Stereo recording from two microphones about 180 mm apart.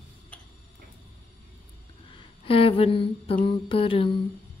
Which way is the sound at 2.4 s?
30° left (ahead or behind).